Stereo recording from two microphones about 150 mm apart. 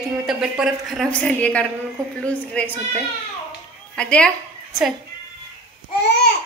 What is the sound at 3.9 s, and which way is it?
Speech, 5° left (ahead or behind).